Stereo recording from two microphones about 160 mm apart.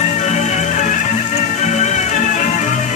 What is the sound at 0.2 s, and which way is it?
Music, 45° left (ahead or behind).